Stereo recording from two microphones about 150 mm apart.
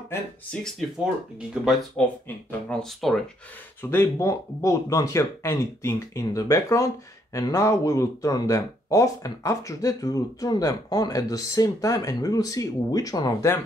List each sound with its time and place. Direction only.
1.5 s speech: centre (ahead or behind)
3.9 s speech: 20° left (ahead or behind)